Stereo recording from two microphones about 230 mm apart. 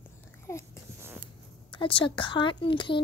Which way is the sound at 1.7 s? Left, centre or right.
Left.